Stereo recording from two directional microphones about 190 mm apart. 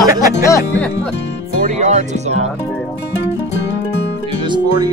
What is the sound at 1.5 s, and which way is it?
Speech, 45° right (ahead or behind).